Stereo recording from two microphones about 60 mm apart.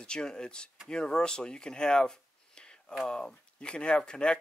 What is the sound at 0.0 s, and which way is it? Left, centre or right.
Speech, centre.